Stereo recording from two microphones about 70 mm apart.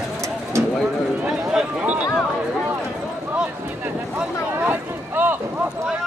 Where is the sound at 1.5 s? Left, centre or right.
Centre.